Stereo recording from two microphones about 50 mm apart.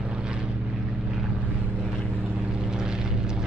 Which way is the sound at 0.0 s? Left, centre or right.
Centre.